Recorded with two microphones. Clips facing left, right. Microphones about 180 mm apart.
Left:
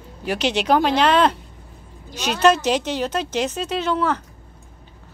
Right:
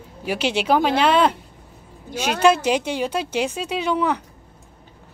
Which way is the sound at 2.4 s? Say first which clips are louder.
Even; 10° right (ahead or behind).